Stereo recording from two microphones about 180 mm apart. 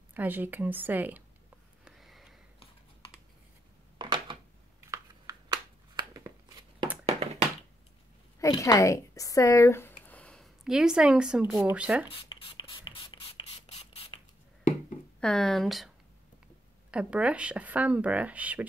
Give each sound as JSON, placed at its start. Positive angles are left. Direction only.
{"t": 0.1, "sound": "speech", "side_deg": -10}
{"t": 1.9, "sound": "sniff", "side_deg": 0}
{"t": 4.0, "sound": "a sound", "side_deg": -25}
{"t": 8.4, "sound": "speech", "side_deg": 20}
{"t": 12.1, "sound": "a sound", "side_deg": 25}
{"t": 15.1, "sound": "speech", "side_deg": 5}
{"t": 16.9, "sound": "speech", "side_deg": -5}